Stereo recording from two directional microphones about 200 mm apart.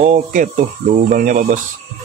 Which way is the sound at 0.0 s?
40° right (ahead or behind).